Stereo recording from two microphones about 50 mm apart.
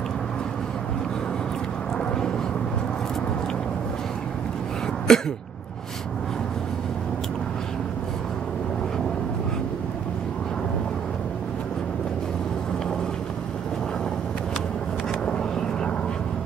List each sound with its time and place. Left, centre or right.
2.0 s vehicle: centre
5.1 s throat clearing: centre
15.2 s vehicle: centre